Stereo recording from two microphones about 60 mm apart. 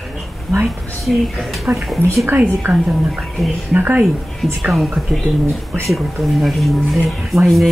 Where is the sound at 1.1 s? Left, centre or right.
Centre.